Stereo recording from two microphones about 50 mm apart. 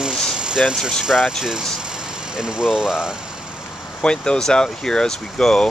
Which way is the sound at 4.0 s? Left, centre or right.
Centre.